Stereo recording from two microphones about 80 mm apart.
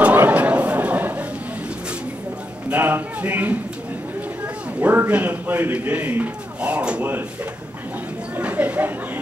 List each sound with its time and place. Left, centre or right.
0.0 s chatter: centre
2.7 s a man's voice: right
4.7 s a man's voice: right
8.4 s a man's voice: centre